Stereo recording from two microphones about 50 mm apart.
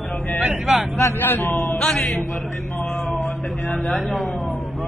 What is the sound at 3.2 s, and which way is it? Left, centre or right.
Speech, left.